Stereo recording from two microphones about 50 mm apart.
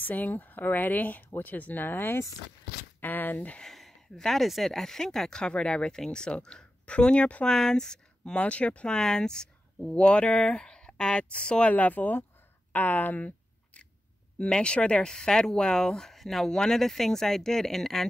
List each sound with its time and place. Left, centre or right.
0.0 s speech: left
3.6 s speech: centre; by 7.4 s left
7.4 s speech: centre
11.7 s speech: left
14.4 s speech: left